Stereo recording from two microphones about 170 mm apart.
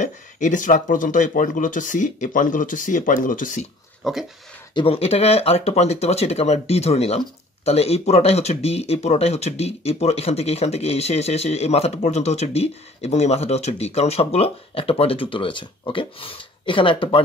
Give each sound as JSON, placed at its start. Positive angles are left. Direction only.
{"t": 0.0, "sound": "speech", "side_deg": 45}
{"t": 4.0, "sound": "speech", "side_deg": 0}
{"t": 4.7, "sound": "speech", "side_deg": 35}